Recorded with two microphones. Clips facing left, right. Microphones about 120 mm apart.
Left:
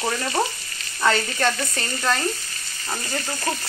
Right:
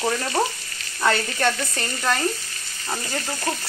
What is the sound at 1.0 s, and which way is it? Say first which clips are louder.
Frying: even; 10° right (ahead or behind).